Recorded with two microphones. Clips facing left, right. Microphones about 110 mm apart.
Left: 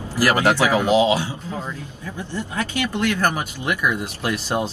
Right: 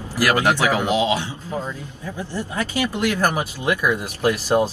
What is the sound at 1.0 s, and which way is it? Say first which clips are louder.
Speech: left 3 dB; 15° left (ahead or behind).